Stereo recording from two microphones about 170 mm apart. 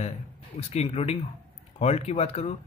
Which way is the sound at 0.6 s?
40° left (ahead or behind).